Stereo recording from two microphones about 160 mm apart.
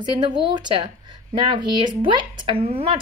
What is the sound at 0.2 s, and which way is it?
Speech, 30° right (ahead or behind).